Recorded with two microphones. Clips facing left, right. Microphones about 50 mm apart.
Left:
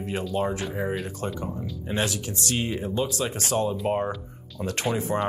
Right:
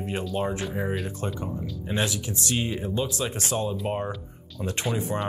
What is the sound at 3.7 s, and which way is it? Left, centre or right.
Speech, centre.